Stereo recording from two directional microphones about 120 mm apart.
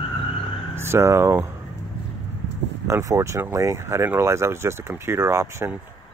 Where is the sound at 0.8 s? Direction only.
20° right (ahead or behind).